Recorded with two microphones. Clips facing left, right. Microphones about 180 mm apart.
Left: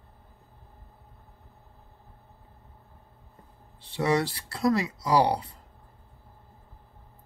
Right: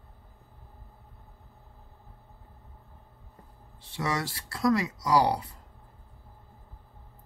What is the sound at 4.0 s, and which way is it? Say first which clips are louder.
Speech: left 6 dB; 30° left (ahead or behind).